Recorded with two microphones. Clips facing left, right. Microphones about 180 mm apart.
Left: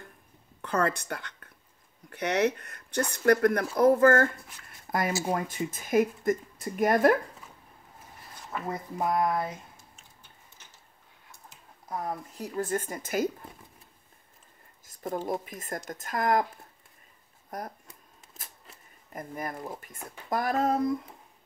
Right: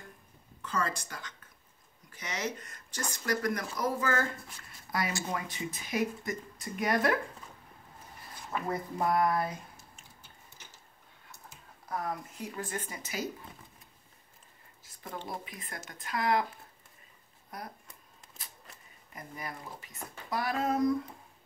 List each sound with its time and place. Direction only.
0.6 s speech: 60° left (ahead or behind)
8.9 s speech: 20° left (ahead or behind)
11.9 s speech: 25° left (ahead or behind)
12.4 s speech: 40° left (ahead or behind)
14.9 s speech: 45° left (ahead or behind)
17.5 s speech: 45° left (ahead or behind)
19.1 s speech: 50° left (ahead or behind)